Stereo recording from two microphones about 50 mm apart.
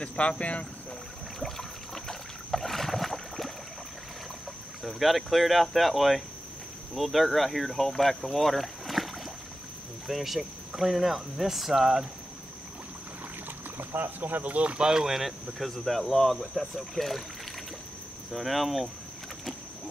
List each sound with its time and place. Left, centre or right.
0.0 s speech: left
1.4 s boat: centre
4.8 s speech: centre
13.7 s speech: right; by 17.2 s centre
18.3 s speech: centre